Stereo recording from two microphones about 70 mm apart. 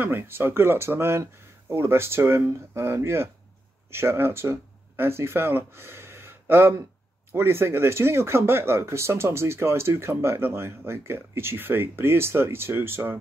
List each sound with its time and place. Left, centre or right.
0.0 s speech: right